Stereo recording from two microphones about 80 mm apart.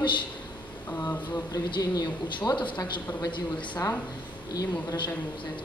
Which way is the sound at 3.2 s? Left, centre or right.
Left.